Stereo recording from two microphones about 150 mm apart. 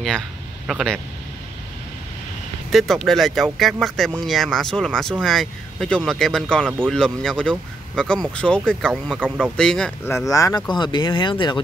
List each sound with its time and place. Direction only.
0.7 s speech: centre (ahead or behind)
2.7 s speech: centre (ahead or behind)
10.3 s speech: 25° left (ahead or behind)